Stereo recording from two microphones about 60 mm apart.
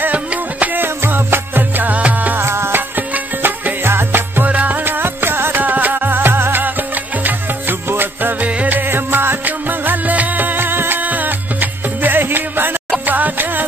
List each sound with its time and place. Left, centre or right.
0.0 s music: right
1.0 s music: right
2.3 s music: right
4.5 s music: right